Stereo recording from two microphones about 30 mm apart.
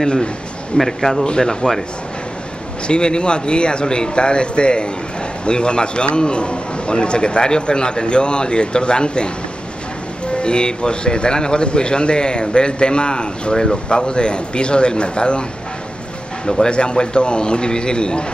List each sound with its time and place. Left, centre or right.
0.0 s a man's voice: left
0.7 s a man's voice: centre
1.4 s a man's voice: left
2.9 s a man's voice: left
16.4 s a man's voice: left